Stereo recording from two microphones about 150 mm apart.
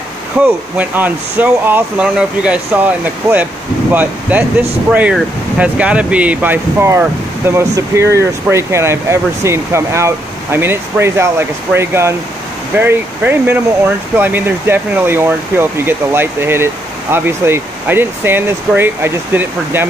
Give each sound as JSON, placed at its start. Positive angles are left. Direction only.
{"t": 0.4, "sound": "speech", "side_deg": -10}